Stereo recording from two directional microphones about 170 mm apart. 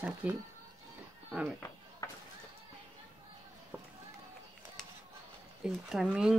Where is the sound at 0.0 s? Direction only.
5° right (ahead or behind).